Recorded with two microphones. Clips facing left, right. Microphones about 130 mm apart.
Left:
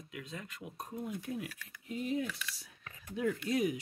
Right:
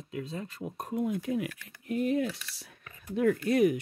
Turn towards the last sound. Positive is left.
turn(degrees=-60)  # may be behind; listen again after turning